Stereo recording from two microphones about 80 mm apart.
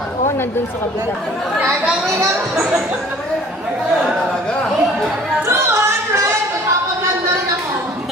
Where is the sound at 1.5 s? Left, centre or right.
Centre.